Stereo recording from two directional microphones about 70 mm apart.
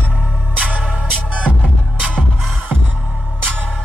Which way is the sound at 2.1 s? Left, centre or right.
Centre.